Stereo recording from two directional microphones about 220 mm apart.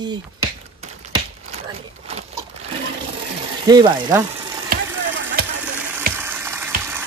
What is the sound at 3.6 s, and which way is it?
Speech, 20° right (ahead or behind).